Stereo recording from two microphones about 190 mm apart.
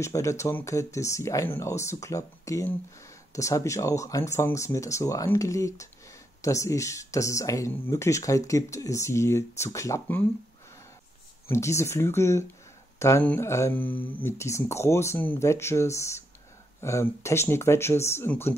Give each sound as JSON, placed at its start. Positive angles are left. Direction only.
{"t": 0.0, "sound": "speech", "side_deg": 15}
{"t": 11.4, "sound": "speech", "side_deg": 15}